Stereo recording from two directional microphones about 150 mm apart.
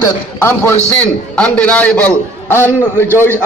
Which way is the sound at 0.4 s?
15° left (ahead or behind).